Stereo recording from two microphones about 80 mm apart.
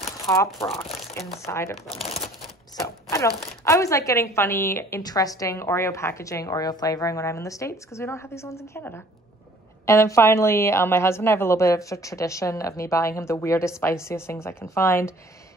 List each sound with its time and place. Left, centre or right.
0.2 s a woman's voice: left
3.1 s a woman's voice: left
5.0 s a woman's voice: left